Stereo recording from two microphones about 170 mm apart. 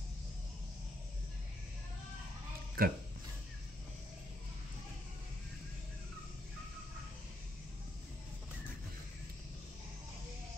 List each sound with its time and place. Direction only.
2.8 s speech: 60° right (ahead or behind)